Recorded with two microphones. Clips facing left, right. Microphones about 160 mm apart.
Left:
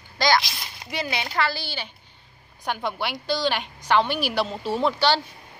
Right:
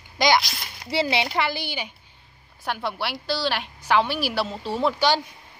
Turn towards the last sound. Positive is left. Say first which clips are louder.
# left 1 dB
turn(degrees=0)  # may be behind; listen again after turning